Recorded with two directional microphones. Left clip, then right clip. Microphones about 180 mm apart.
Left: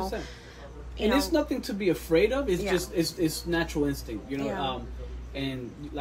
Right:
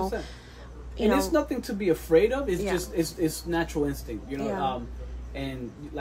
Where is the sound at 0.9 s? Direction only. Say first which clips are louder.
Right 2 dB; 30° right (ahead or behind).